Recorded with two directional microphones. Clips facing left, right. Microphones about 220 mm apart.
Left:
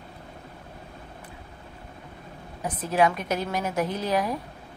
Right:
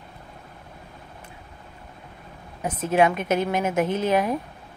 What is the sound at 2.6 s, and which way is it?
A woman's voice, 20° right (ahead or behind).